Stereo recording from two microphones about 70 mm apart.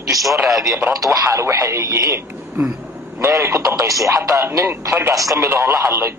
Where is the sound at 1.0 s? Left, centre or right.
Right.